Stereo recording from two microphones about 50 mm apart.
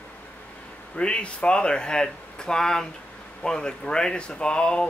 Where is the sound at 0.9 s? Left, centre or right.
Left.